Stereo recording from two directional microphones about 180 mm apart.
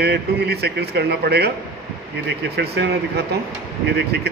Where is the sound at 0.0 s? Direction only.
65° right (ahead or behind).